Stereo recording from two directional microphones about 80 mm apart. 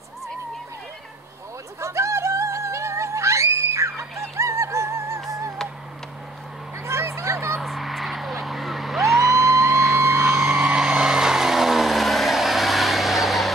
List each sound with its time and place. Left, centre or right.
1.8 s music: right
6.9 s a sound: right
7.5 s vehicle: centre